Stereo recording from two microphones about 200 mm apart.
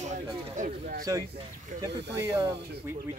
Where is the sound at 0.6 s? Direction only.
40° right (ahead or behind).